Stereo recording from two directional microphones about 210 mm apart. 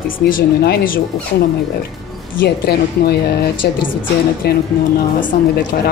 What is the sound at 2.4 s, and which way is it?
Speech, 50° left (ahead or behind).